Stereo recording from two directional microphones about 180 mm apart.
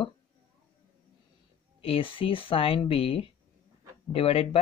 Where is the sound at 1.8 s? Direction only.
30° left (ahead or behind).